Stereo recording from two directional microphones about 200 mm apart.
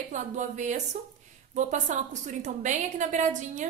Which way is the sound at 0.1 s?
40° right (ahead or behind).